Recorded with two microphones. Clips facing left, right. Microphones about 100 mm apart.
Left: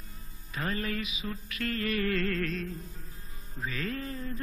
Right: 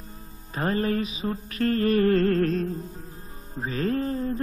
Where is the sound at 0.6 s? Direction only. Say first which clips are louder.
Right 8 dB; 35° right (ahead or behind).